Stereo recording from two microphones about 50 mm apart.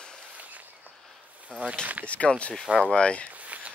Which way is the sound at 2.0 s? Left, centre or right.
Left.